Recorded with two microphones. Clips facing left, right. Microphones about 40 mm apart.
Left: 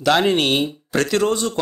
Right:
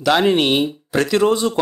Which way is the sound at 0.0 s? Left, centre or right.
Centre.